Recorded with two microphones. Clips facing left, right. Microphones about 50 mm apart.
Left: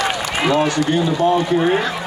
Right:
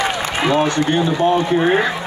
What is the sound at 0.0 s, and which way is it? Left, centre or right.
A man's voice, right.